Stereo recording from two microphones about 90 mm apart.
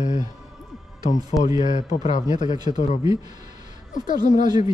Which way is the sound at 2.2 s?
55° right (ahead or behind).